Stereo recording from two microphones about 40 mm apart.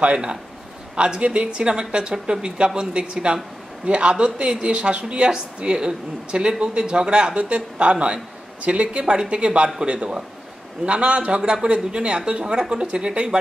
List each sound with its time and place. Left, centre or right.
0.9 s a man's voice: right
11.3 s speech: right